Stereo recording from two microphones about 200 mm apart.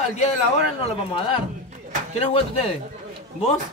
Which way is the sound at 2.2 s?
30° left (ahead or behind).